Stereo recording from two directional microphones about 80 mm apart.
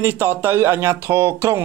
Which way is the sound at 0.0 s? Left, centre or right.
Right.